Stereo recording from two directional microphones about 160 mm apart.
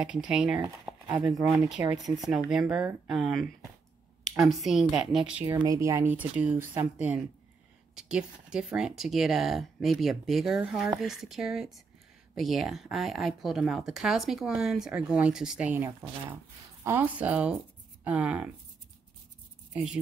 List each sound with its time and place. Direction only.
0.0 s speech: 5° right (ahead or behind)
0.6 s speech: 15° right (ahead or behind)
2.2 s speech: 5° right (ahead or behind)
5.6 s speech: 20° right (ahead or behind)
19.7 s speech: 5° right (ahead or behind)